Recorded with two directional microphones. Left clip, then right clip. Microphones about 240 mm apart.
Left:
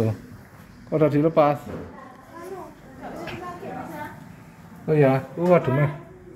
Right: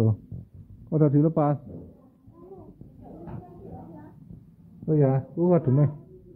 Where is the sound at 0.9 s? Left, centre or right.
Right.